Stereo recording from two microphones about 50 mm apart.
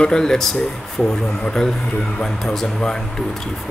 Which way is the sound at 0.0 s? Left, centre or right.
Centre.